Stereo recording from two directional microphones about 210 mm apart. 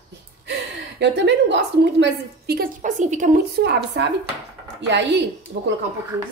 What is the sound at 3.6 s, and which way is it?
A woman's voice, 50° right (ahead or behind).